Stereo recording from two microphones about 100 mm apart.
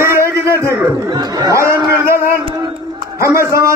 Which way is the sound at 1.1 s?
45° right (ahead or behind).